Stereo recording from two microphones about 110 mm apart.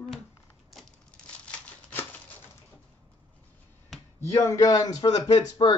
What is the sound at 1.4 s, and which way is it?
Crumpling, 15° left (ahead or behind).